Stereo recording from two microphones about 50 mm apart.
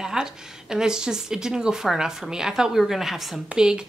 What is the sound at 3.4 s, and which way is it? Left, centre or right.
Speech, centre.